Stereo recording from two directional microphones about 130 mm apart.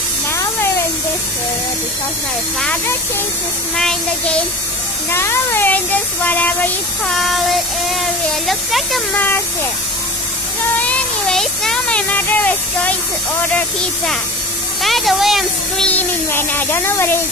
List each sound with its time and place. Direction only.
3.7 s speech: 5° left (ahead or behind)
5.1 s speech: 20° left (ahead or behind)
7.1 s speech: centre (ahead or behind)
9.1 s speech: 15° left (ahead or behind)
10.8 s a sound: 10° left (ahead or behind)
14.8 s speech: centre (ahead or behind)
15.9 s speech: 15° left (ahead or behind)